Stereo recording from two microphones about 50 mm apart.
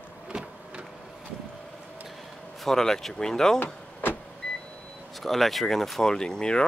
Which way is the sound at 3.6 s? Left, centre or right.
Left.